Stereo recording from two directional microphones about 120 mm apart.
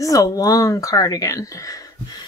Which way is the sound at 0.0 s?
30° left (ahead or behind).